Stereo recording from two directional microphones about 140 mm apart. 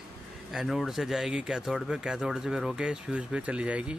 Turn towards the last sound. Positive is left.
turn(degrees=-10)  # may be behind; listen again after turning